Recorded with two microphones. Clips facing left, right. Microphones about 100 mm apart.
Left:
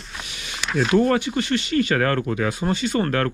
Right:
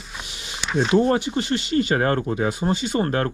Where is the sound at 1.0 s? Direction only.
20° right (ahead or behind).